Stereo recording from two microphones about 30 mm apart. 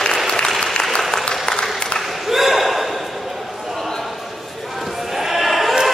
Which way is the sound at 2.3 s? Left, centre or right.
Centre.